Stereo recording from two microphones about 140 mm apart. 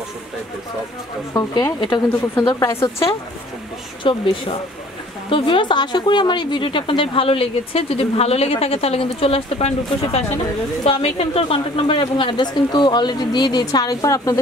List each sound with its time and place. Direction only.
1.3 s speech: 25° left (ahead or behind)
4.0 s a woman's voice: 35° left (ahead or behind)